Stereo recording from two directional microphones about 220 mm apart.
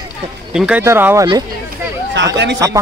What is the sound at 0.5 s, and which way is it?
Speech, 5° right (ahead or behind).